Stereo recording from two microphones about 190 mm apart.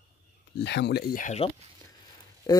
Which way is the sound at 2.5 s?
20° left (ahead or behind).